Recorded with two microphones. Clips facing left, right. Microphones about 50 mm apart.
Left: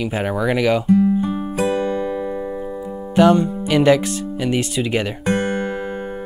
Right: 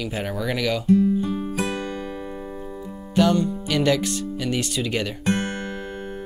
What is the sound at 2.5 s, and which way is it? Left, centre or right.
Music, centre.